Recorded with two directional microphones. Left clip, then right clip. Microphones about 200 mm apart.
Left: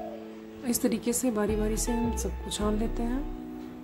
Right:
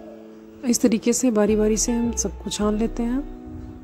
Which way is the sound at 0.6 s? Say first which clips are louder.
Right 9 dB; 35° right (ahead or behind).